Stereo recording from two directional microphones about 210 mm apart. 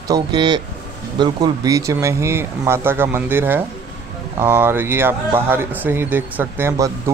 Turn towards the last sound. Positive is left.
turn(degrees=-15)  # may be behind; listen again after turning